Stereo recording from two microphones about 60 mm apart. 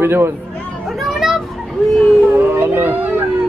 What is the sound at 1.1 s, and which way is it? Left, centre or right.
Children playing, centre.